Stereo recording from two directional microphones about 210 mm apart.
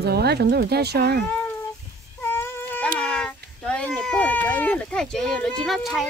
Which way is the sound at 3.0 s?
5° left (ahead or behind).